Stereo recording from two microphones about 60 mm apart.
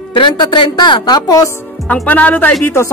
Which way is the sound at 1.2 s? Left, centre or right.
Left.